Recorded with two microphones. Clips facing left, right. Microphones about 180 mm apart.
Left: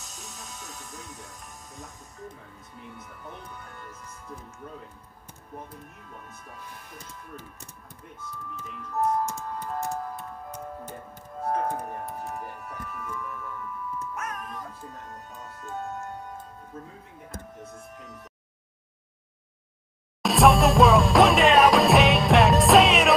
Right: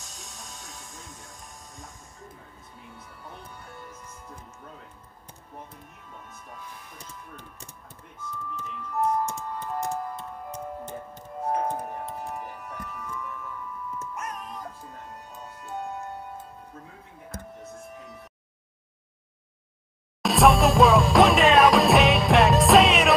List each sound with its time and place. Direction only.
0.0 s music: centre (ahead or behind)
0.6 s music: 20° left (ahead or behind)
10.9 s music: 20° right (ahead or behind)
15.6 s music: 15° right (ahead or behind)
20.2 s music: centre (ahead or behind)